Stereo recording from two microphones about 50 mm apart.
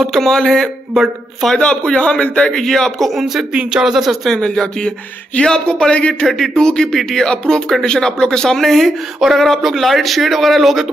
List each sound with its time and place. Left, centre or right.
0.0 s speech: centre
1.6 s a man's voice: centre
2.6 s speech: centre
4.3 s speech: centre
6.2 s speech: centre